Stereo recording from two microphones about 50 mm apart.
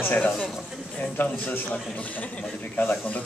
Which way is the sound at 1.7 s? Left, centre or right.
Left.